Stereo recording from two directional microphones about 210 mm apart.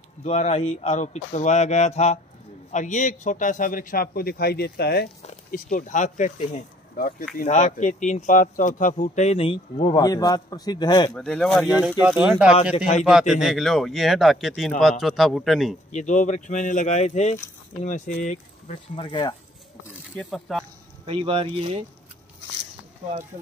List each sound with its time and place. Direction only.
0.2 s speech: 30° left (ahead or behind); by 5.1 s 50° left (ahead or behind)
5.5 s speech: 40° left (ahead or behind); by 12.5 s 5° right (ahead or behind)
12.7 s speech: 30° left (ahead or behind)
13.3 s speech: centre (ahead or behind)
15.9 s speech: 35° left (ahead or behind)
18.9 s speech: 20° left (ahead or behind)
20.2 s speech: centre (ahead or behind)
21.0 s speech: 25° right (ahead or behind)